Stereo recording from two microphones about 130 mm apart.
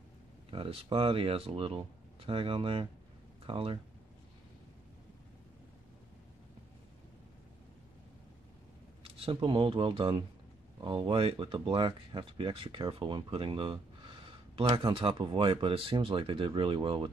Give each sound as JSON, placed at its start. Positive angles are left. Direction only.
{"t": 0.5, "sound": "speech", "side_deg": -45}
{"t": 9.0, "sound": "speech", "side_deg": -45}